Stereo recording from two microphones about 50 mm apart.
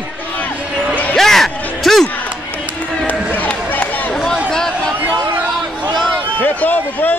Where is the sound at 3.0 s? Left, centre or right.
Left.